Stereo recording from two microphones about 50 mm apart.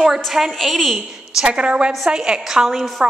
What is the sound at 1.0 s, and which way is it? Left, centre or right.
A woman's voice, centre.